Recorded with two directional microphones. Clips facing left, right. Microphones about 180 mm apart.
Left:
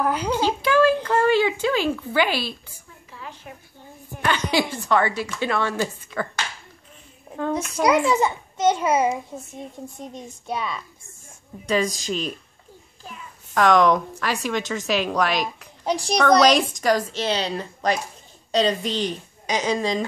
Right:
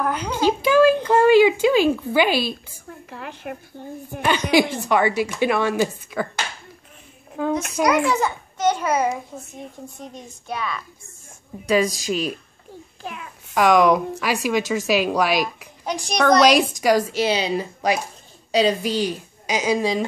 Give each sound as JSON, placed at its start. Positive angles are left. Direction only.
{"t": 0.4, "sound": "speech", "side_deg": -15}
{"t": 2.9, "sound": "a sound", "side_deg": -65}
{"t": 3.8, "sound": "a woman's voice", "side_deg": -65}
{"t": 4.2, "sound": "speech", "side_deg": -15}
{"t": 7.8, "sound": "a child's voice", "side_deg": 25}
{"t": 10.4, "sound": "a child's voice", "side_deg": 25}
{"t": 11.6, "sound": "a woman's voice", "side_deg": -5}
{"t": 13.0, "sound": "a child's voice", "side_deg": -75}
{"t": 13.6, "sound": "speech", "side_deg": -10}
{"t": 15.8, "sound": "a child's voice", "side_deg": 30}
{"t": 16.2, "sound": "speech", "side_deg": -10}